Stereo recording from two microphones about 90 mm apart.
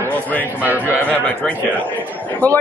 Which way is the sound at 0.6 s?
20° right (ahead or behind).